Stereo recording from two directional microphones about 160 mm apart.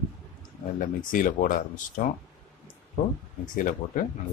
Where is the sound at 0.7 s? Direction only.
55° left (ahead or behind).